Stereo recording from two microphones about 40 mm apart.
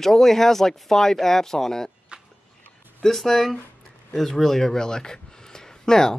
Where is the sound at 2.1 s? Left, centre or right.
Right.